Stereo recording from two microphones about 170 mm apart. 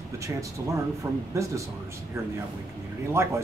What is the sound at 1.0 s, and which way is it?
Speech, 15° right (ahead or behind).